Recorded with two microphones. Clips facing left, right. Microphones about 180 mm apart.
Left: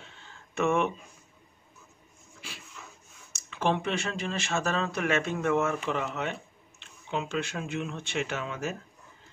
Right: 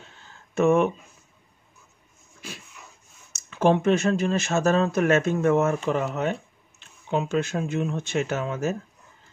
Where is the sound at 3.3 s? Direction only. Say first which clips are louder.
Right 8 dB; 45° right (ahead or behind).